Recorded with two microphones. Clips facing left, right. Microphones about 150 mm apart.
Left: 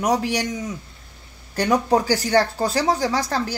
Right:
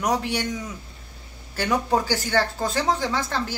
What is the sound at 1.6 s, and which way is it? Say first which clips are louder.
Speech: left 4 dB; 40° left (ahead or behind).